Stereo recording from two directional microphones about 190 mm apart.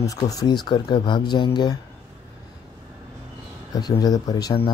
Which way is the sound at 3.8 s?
20° left (ahead or behind).